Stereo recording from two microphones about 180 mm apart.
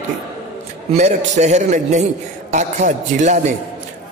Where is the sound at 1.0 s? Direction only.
40° right (ahead or behind).